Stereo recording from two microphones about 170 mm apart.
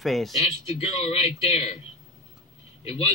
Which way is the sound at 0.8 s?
40° left (ahead or behind).